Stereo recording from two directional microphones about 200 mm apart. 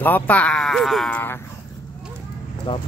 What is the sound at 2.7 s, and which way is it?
Speech, 25° left (ahead or behind).